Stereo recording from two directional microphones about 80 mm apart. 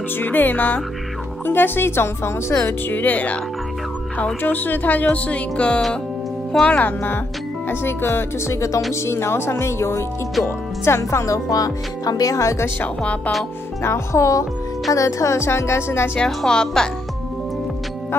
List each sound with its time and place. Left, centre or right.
0.2 s a woman's voice: left
7.6 s speech: left
12.8 s a woman's voice: centre
13.8 s speech: left
16.2 s a woman's voice: centre